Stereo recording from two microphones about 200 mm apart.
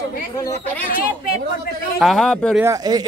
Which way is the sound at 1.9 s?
Centre (ahead or behind).